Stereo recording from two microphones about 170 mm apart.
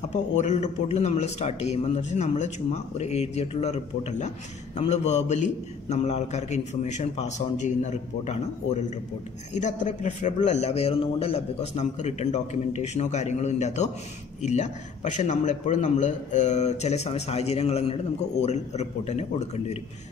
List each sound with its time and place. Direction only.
0.1 s a man's voice: 45° left (ahead or behind)